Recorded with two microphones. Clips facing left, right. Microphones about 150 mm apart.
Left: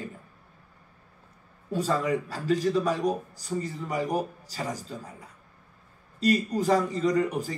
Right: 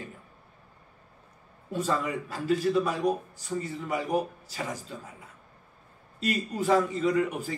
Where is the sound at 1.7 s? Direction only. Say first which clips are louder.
Left 3 dB; 40° left (ahead or behind).